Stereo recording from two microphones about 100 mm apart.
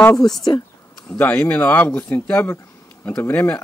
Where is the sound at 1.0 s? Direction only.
20° left (ahead or behind).